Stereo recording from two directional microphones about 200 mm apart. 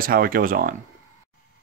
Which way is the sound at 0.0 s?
45° right (ahead or behind).